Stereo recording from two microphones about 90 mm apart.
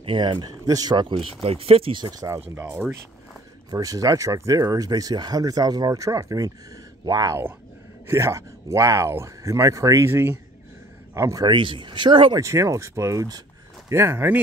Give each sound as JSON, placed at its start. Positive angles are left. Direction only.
{"t": 0.0, "sound": "speech", "side_deg": -70}
{"t": 1.0, "sound": "speech", "side_deg": -90}
{"t": 2.1, "sound": "speech", "side_deg": -35}
{"t": 3.7, "sound": "speech", "side_deg": -40}
{"t": 8.1, "sound": "speech", "side_deg": -30}
{"t": 11.4, "sound": "speech", "side_deg": -65}
{"t": 12.4, "sound": "speech", "side_deg": -35}